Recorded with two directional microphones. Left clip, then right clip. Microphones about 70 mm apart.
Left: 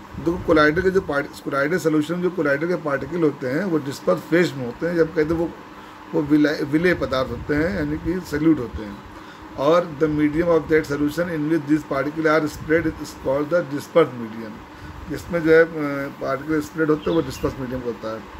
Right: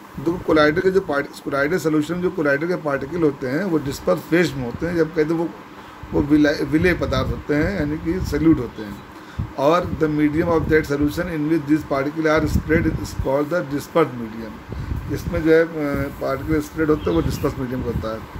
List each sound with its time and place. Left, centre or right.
0.5 s speech: right
3.2 s speech: right
9.6 s speech: right
15.1 s speech: centre
16.7 s speech: right